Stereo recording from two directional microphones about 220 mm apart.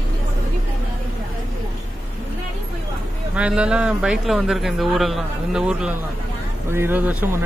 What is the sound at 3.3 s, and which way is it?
Speech, 5° right (ahead or behind).